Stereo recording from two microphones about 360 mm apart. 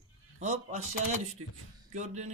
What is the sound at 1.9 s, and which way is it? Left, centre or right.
Speech, centre.